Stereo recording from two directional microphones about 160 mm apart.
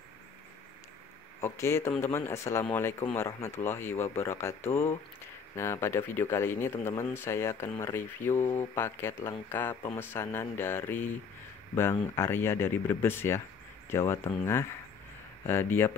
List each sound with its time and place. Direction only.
1.4 s speech: 15° left (ahead or behind)